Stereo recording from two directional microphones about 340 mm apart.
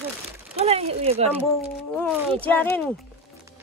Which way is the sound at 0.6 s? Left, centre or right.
Centre.